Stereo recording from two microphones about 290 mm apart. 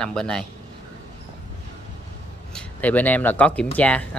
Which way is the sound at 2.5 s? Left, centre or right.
Centre.